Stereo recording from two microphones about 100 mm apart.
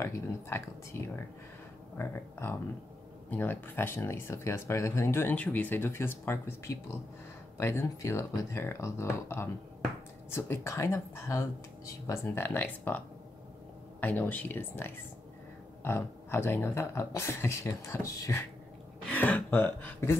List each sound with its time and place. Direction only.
0.9 s speech: 30° left (ahead or behind)
12.4 s speech: 20° left (ahead or behind)
14.0 s speech: 20° left (ahead or behind); by 18.3 s 35° left (ahead or behind)
19.0 s speech: 15° left (ahead or behind)